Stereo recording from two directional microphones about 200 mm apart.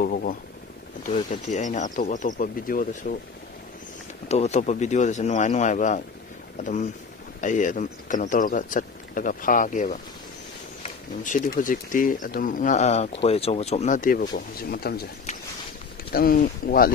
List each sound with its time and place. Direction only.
0.0 s a sound: 45° left (ahead or behind)
1.5 s speech: 40° left (ahead or behind)
4.3 s speech: 35° left (ahead or behind); by 15.0 s 50° left (ahead or behind)
16.1 s speech: 45° left (ahead or behind)